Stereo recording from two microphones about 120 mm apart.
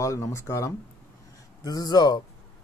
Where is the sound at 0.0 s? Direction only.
25° left (ahead or behind).